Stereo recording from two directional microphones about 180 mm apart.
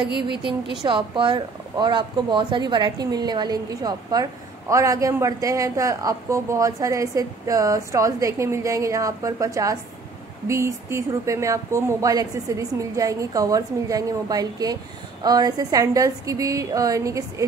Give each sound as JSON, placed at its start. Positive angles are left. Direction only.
{"t": 0.1, "sound": "a woman's voice", "side_deg": -65}
{"t": 0.8, "sound": "speech", "side_deg": -25}